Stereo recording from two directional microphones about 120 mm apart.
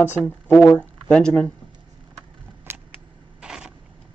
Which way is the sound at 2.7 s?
20° right (ahead or behind).